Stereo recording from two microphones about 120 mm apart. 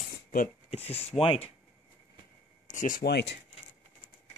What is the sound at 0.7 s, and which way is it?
Speech, 55° left (ahead or behind).